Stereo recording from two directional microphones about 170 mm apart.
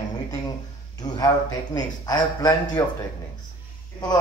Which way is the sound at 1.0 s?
20° left (ahead or behind).